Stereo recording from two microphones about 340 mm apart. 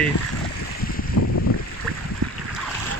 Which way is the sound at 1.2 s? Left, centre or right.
Left.